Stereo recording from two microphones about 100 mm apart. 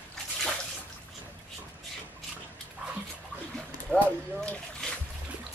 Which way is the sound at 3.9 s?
10° left (ahead or behind).